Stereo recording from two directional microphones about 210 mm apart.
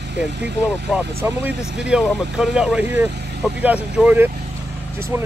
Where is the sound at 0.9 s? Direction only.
5° right (ahead or behind).